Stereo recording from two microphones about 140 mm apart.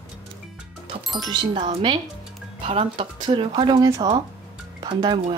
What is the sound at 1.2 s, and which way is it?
Speech, 35° right (ahead or behind).